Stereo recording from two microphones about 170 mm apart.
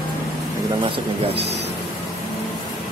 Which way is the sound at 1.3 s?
80° right.